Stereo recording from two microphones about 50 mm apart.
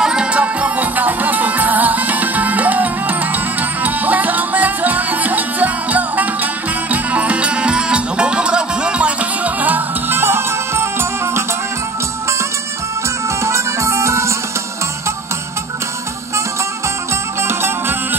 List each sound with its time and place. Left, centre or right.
0.0 s music: centre; by 11.4 s right
13.4 s music: right
17.4 s music: right